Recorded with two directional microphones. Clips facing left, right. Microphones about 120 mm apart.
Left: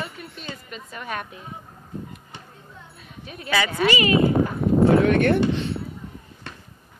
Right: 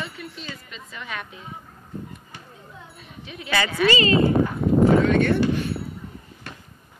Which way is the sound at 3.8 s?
15° left (ahead or behind).